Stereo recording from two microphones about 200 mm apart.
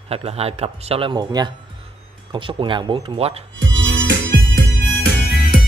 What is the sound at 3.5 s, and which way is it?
Music, 65° right (ahead or behind).